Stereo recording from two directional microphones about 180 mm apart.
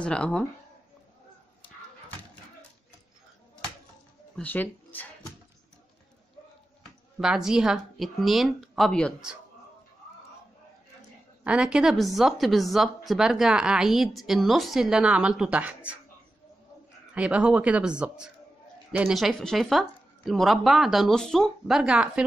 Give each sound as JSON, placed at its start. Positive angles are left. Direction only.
{"t": 0.0, "sound": "a woman's voice", "side_deg": 5}
{"t": 4.4, "sound": "speech", "side_deg": 10}
{"t": 7.2, "sound": "a woman's voice", "side_deg": -5}
{"t": 11.4, "sound": "a woman's voice", "side_deg": -5}
{"t": 17.1, "sound": "a woman's voice", "side_deg": -5}